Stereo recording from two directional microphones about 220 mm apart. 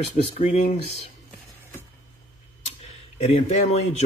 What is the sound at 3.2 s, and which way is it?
Speech, 30° left (ahead or behind).